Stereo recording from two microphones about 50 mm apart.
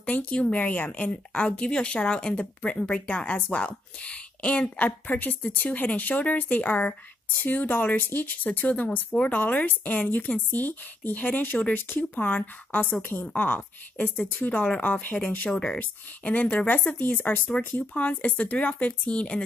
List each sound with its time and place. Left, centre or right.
0.0 s a woman's voice: left
18.0 s speech: left